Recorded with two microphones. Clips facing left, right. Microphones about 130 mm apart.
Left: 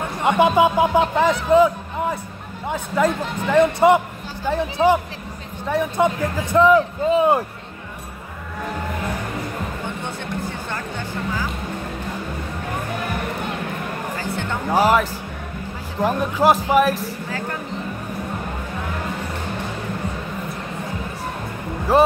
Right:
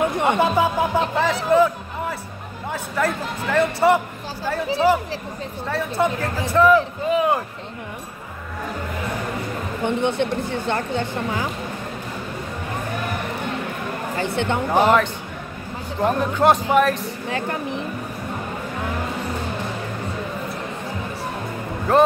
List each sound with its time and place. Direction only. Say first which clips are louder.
0.4 s speech: left 7 dB; 15° left (ahead or behind)
9.8 s speech: right 9 dB; 65° right (ahead or behind)
14.1 s speech: right 3 dB; 65° right (ahead or behind)
14.7 s speech: left 1 dB; 5° left (ahead or behind)
21.9 s speech: even; 5° left (ahead or behind)